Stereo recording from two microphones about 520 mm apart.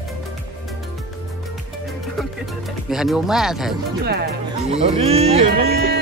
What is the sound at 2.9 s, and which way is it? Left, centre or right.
Speech, centre.